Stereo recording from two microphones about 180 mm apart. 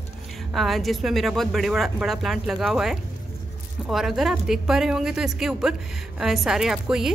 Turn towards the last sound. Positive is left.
turn(degrees=0)  # may be behind; listen again after turning